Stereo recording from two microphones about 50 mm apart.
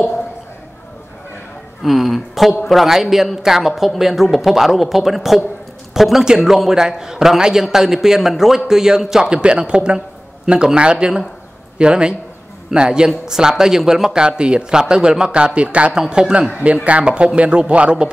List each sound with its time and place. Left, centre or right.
1.8 s a man's voice: centre
9.3 s a man's voice: right